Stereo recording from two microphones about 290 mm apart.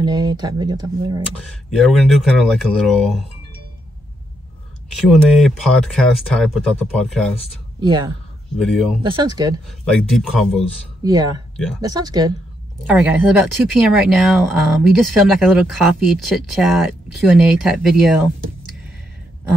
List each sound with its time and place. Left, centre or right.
0.0 s speech: centre
1.4 s speech: centre
5.0 s speech: centre
7.8 s speech: centre
8.5 s speech: centre
9.0 s speech: centre
9.7 s speech: centre
11.5 s speech: centre
11.8 s speech: centre
12.7 s speech: centre